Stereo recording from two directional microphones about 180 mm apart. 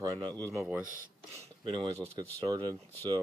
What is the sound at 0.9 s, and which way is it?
Speech, 40° right (ahead or behind).